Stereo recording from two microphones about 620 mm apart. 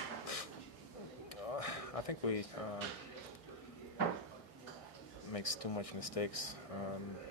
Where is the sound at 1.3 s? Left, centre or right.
Left.